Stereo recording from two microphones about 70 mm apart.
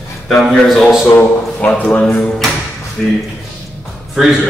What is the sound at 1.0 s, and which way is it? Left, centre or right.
Speech, left.